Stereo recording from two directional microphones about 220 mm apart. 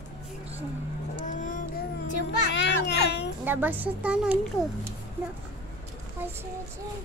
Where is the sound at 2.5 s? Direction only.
50° left (ahead or behind).